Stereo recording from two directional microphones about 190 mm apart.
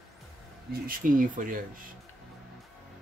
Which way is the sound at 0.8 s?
45° right (ahead or behind).